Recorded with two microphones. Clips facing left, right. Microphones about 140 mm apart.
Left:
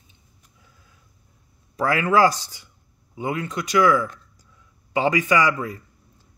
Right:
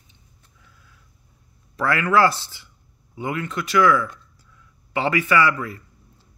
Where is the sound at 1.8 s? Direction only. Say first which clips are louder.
Even; 15° left (ahead or behind).